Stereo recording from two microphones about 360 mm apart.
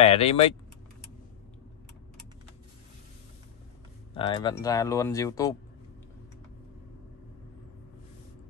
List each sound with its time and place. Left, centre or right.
0.0 s speech: centre
4.1 s speech: centre